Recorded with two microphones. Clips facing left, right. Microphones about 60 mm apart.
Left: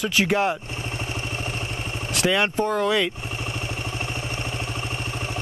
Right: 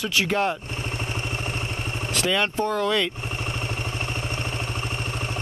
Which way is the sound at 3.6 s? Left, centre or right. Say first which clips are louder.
Even; right.